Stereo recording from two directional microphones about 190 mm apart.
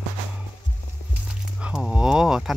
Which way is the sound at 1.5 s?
5° right (ahead or behind).